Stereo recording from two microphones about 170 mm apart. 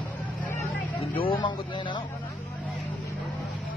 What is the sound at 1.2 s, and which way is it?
Speech, 30° left (ahead or behind).